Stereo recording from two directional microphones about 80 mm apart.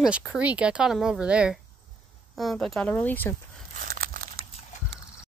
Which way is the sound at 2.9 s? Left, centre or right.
Left.